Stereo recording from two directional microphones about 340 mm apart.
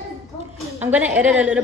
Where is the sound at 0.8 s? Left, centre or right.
Centre.